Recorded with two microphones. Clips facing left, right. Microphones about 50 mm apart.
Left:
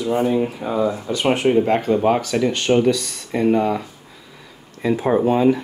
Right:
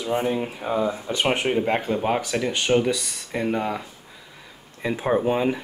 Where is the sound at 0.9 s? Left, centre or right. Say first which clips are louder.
Left 2 dB; right.